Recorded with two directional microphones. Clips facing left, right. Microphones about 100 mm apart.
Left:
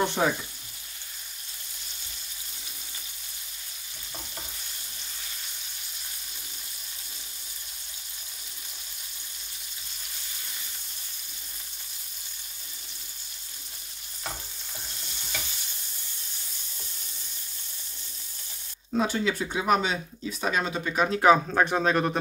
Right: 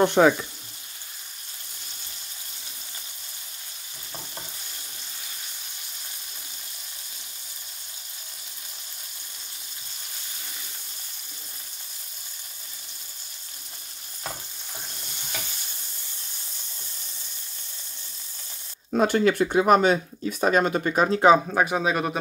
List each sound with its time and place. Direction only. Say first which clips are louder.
0.0 s frying: right 7 dB; 65° right (ahead or behind)
18.9 s speech: right 6 dB; 55° right (ahead or behind)
21.0 s speech: right 2 dB; 25° right (ahead or behind)
21.5 s speech: right 1 dB; 10° right (ahead or behind)